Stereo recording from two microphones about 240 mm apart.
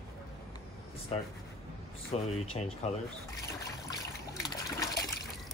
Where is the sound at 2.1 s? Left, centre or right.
Left.